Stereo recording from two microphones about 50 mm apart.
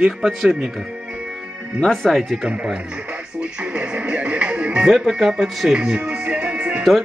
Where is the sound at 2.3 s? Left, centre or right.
Centre.